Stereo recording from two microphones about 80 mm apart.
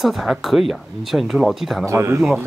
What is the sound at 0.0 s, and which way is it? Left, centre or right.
Speech, centre.